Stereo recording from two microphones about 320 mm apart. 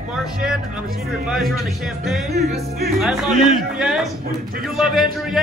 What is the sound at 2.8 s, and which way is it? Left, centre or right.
A man's voice, centre.